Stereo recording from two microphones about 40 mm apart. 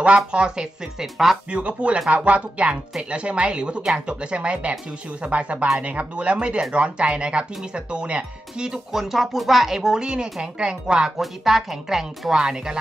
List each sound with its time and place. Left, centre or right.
0.0 s speech: right
1.1 s speech: centre
1.5 s speech: right
9.1 s speech: centre
11.1 s speech: centre